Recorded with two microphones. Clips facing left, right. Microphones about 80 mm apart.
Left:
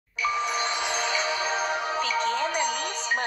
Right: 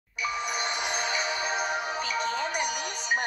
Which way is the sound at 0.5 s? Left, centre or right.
Centre.